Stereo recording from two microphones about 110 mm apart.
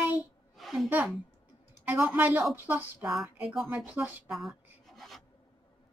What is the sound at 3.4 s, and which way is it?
Speech, 5° right (ahead or behind).